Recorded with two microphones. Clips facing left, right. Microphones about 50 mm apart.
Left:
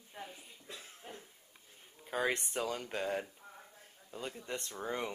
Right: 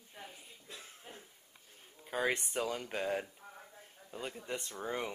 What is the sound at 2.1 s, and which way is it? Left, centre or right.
Speech, centre.